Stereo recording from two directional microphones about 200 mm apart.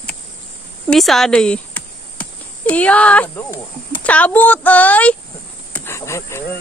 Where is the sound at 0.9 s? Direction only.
Centre (ahead or behind).